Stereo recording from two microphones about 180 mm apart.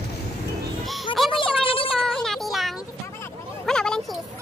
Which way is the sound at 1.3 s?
30° left (ahead or behind).